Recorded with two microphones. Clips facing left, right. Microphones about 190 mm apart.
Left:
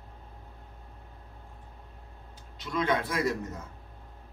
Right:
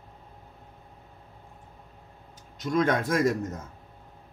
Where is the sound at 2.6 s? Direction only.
45° right (ahead or behind).